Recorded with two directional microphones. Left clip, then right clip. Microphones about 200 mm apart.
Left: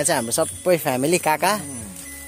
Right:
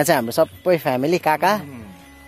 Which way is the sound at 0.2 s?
20° right (ahead or behind).